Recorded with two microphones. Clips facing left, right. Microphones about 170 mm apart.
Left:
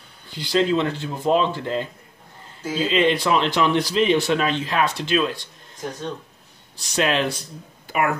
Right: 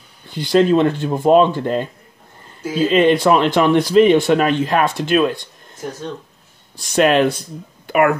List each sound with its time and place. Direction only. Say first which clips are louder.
0.3 s speech: right 6 dB; 50° right (ahead or behind)
2.9 s speech: right 6 dB; 50° right (ahead or behind)
6.9 s speech: right 8 dB; 55° right (ahead or behind)
7.8 s a sound: right 8 dB; 60° right (ahead or behind)